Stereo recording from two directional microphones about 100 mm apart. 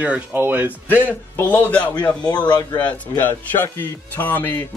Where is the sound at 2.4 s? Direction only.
50° left (ahead or behind).